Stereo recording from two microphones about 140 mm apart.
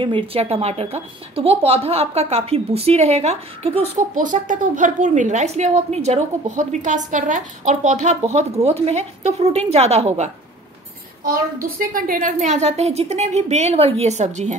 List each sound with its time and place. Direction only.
0.0 s speech: 40° right (ahead or behind)
4.1 s a woman's voice: 65° right (ahead or behind); by 10.3 s 50° right (ahead or behind)
11.6 s speech: 90° right; by 14.5 s 55° right (ahead or behind)